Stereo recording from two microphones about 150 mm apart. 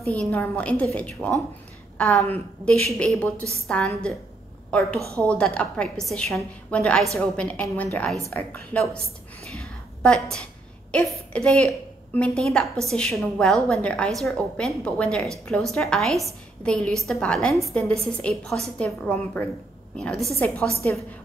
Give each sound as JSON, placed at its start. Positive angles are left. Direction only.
{"t": 0.0, "sound": "a woman's voice", "side_deg": 5}
{"t": 9.6, "sound": "a sound", "side_deg": 5}
{"t": 12.8, "sound": "a woman's voice", "side_deg": 5}